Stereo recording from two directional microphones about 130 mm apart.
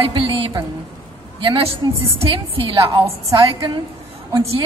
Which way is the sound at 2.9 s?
25° right (ahead or behind).